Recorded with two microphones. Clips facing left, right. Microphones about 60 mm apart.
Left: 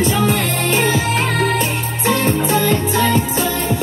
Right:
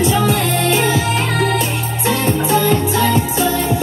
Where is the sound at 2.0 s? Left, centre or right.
Left.